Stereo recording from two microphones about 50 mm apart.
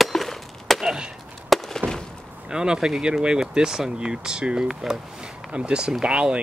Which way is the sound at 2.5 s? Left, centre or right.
Centre.